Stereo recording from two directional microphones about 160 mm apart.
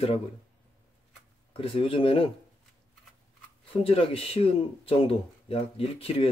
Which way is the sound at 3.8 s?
35° left (ahead or behind).